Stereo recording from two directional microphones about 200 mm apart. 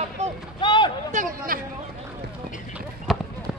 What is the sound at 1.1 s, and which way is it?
Speech, 40° right (ahead or behind).